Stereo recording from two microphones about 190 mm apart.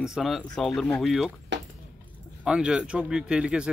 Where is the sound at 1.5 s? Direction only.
65° right (ahead or behind).